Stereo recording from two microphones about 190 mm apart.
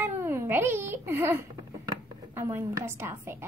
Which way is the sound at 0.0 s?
10° right (ahead or behind).